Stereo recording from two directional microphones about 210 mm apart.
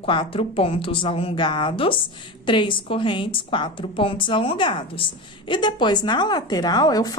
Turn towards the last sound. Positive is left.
turn(degrees=20)  # may be behind; listen again after turning